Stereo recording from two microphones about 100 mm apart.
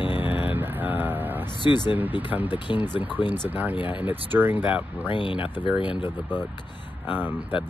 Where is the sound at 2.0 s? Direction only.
15° right (ahead or behind).